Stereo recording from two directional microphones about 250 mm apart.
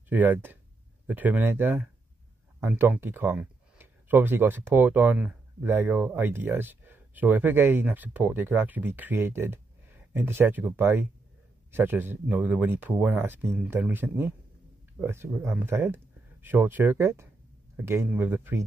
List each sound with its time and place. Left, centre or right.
0.1 s speech: centre